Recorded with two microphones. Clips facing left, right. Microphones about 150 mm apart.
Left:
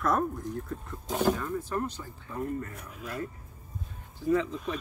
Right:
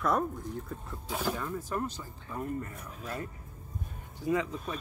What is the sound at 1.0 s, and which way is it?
Speech, 45° left (ahead or behind).